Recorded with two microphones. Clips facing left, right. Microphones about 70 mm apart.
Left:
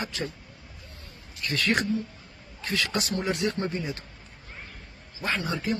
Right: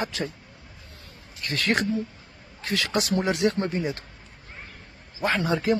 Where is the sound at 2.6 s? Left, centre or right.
Right.